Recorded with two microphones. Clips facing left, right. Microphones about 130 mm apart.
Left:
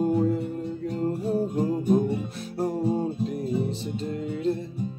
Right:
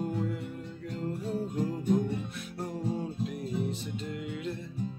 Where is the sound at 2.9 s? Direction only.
35° left (ahead or behind).